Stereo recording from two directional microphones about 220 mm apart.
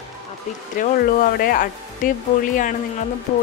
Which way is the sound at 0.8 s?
40° left (ahead or behind).